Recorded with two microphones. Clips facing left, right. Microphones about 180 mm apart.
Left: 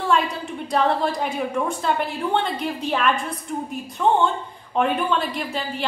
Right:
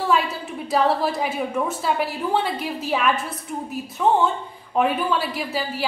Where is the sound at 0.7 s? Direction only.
5° right (ahead or behind).